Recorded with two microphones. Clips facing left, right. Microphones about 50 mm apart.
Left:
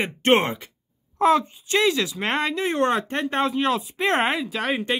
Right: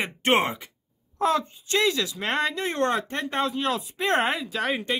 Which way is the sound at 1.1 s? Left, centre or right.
Left.